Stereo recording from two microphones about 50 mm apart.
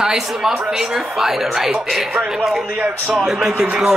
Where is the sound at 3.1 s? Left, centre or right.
Centre.